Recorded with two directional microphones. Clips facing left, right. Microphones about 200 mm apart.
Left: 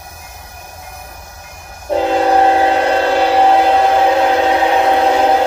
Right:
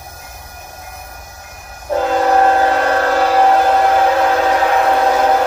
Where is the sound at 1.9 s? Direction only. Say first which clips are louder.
Left 1 dB; 20° left (ahead or behind).